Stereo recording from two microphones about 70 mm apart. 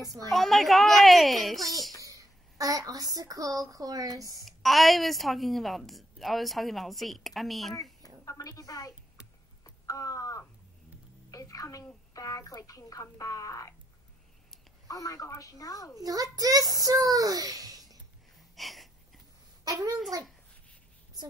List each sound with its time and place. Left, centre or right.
0.3 s a woman's voice: centre
2.0 s a child's voice: right
4.5 s a woman's voice: centre
8.3 s a woman's voice: left
9.8 s crow: left
11.2 s a woman's voice: left
14.9 s a woman's voice: left
16.0 s a child's voice: right
18.6 s wheeze: centre
19.6 s a child's voice: right